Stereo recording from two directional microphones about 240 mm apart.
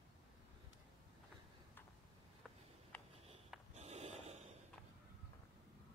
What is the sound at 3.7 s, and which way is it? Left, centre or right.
Snort, right.